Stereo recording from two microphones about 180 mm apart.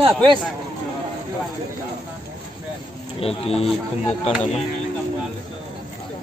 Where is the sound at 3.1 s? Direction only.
35° left (ahead or behind).